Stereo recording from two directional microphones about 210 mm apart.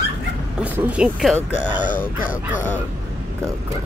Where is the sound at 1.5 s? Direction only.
35° left (ahead or behind).